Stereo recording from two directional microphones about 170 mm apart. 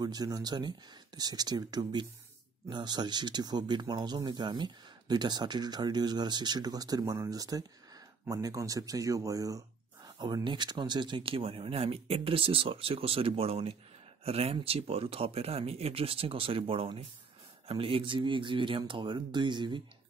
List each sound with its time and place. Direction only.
0.0 s speech: 25° right (ahead or behind)